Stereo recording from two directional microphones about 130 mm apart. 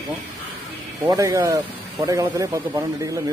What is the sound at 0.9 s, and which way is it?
A man's voice, 30° right (ahead or behind).